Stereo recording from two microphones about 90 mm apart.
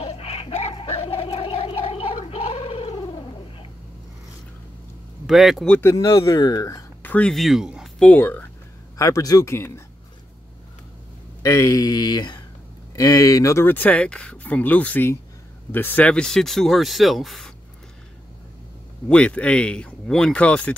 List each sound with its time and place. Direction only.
0.2 s a sound: 90° left
2.9 s cat: 50° left (ahead or behind)
5.2 s speech: 5° right (ahead or behind)
5.9 s speech: 35° left (ahead or behind)
7.0 s a sound: 20° left (ahead or behind)
7.2 s speech: centre (ahead or behind)
8.0 s speech: 20° left (ahead or behind)
8.9 s speech: 40° left (ahead or behind)
11.4 s speech: 35° left (ahead or behind); by 17.5 s centre (ahead or behind)
19.0 s speech: 10° left (ahead or behind)